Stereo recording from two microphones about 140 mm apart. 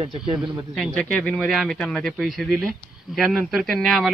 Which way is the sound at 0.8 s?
10° left (ahead or behind).